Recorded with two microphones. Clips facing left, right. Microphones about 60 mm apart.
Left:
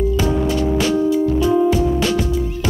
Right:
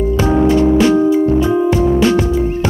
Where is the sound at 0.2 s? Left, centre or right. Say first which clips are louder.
Right 7 dB; right.